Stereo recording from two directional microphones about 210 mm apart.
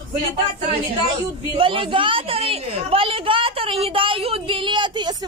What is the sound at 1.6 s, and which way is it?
Speech, 25° right (ahead or behind).